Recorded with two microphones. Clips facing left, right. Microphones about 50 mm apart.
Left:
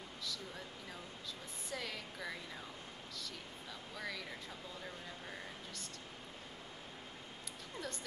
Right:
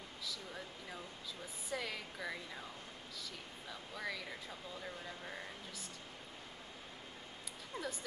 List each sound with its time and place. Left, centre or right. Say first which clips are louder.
1.7 s speech: right 2 dB; centre
3.9 s speech: right 1 dB; centre
7.7 s speech: right 2 dB; centre